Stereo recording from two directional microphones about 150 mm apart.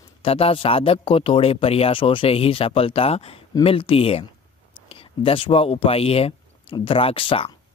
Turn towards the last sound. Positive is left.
turn(degrees=35)  # may be behind; listen again after turning